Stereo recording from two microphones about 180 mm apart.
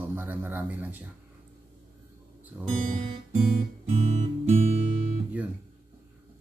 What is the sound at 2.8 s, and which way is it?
Guitar, 40° right (ahead or behind).